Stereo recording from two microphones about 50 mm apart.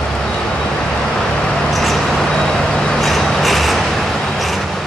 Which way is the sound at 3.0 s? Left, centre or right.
Centre.